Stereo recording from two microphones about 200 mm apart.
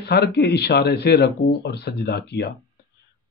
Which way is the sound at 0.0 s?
55° left (ahead or behind).